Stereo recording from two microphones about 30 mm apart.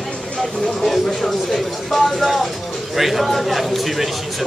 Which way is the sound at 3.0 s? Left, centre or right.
Centre.